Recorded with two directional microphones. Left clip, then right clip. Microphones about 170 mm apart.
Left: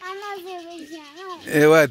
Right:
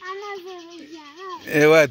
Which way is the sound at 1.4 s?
20° left (ahead or behind).